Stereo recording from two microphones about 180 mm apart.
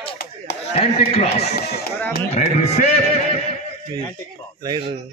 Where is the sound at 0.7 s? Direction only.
35° left (ahead or behind).